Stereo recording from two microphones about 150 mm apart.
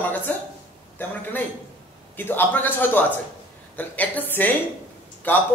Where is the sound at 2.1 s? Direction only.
15° left (ahead or behind).